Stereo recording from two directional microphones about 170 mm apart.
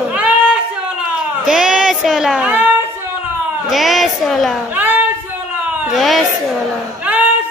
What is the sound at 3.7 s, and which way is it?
Speech, centre (ahead or behind).